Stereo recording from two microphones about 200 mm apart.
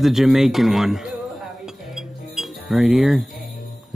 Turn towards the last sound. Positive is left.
turn(degrees=0)  # may be behind; listen again after turning